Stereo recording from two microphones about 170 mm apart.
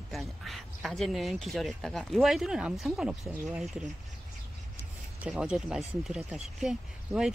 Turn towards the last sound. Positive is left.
turn(degrees=-5)  # may be behind; listen again after turning